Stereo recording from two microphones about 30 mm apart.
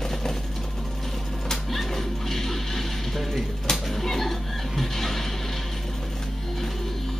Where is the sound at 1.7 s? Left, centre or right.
Centre.